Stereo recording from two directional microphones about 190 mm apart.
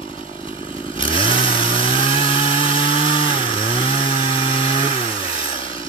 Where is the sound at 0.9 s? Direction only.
25° left (ahead or behind).